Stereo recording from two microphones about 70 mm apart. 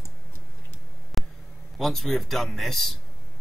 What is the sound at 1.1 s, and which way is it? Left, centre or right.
Hum, centre.